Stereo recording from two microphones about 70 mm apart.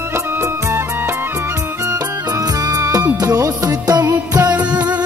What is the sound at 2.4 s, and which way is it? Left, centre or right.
Music, right.